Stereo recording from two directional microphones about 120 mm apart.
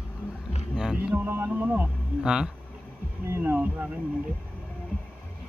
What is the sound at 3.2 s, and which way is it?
Speech, 20° right (ahead or behind).